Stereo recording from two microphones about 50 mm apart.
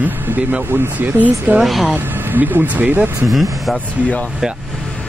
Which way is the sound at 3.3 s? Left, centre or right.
Centre.